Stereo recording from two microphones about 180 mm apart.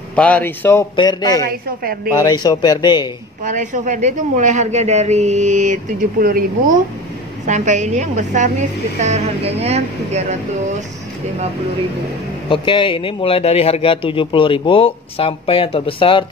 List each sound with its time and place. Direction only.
0.1 s speech: 5° left (ahead or behind)
0.9 s speech: 25° left (ahead or behind)
3.4 s a woman's voice: 45° right (ahead or behind)
12.4 s a man's voice: 30° left (ahead or behind)